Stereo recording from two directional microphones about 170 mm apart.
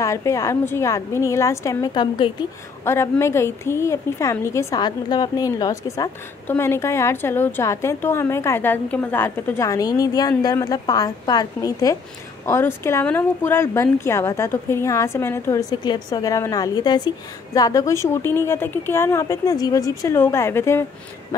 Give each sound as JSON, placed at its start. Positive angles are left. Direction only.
{"t": 0.0, "sound": "a woman's voice", "side_deg": 20}
{"t": 2.8, "sound": "a woman's voice", "side_deg": 15}
{"t": 15.7, "sound": "a woman's voice", "side_deg": 25}